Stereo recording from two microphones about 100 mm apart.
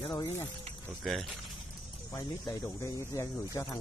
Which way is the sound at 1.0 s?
Centre (ahead or behind).